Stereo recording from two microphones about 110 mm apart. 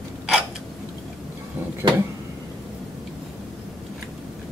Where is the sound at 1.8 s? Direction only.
40° right (ahead or behind).